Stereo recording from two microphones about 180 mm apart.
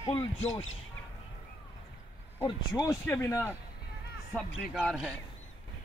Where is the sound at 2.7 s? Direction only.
20° left (ahead or behind).